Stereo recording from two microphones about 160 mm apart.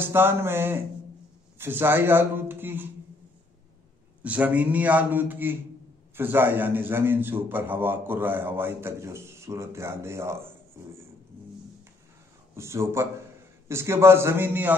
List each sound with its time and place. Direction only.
0.0 s a man's voice: 15° right (ahead or behind)
4.2 s a man's voice: 10° right (ahead or behind)
12.5 s a man's voice: 15° right (ahead or behind)